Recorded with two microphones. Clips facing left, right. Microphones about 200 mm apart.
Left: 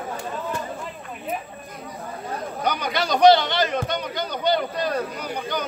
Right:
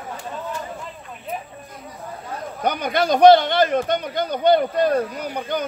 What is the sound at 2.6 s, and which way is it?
A man's voice, 50° right (ahead or behind).